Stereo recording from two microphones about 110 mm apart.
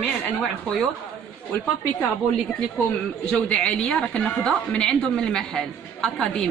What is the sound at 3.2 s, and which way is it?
A woman's voice, 10° left (ahead or behind).